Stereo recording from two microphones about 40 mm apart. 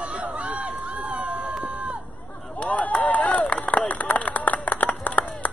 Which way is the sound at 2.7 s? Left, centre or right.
Left.